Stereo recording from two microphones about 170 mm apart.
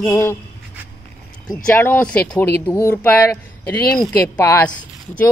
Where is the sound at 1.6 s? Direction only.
10° left (ahead or behind).